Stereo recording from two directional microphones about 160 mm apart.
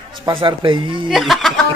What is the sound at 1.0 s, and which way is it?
Speech, centre (ahead or behind).